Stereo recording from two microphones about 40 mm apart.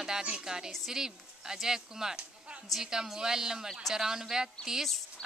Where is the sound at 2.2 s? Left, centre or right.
Right.